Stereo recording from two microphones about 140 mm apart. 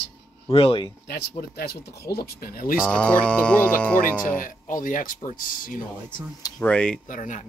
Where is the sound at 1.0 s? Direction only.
90° left.